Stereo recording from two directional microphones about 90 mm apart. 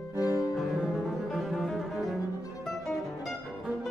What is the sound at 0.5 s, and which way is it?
Music, 5° right (ahead or behind).